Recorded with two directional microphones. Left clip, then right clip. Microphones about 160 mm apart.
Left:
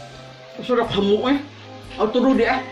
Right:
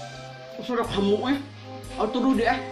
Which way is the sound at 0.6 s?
20° right (ahead or behind).